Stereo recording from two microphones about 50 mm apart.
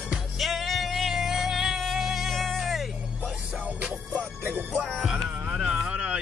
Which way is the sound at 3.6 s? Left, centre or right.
Right.